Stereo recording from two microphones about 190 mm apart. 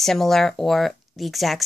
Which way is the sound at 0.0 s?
Centre (ahead or behind).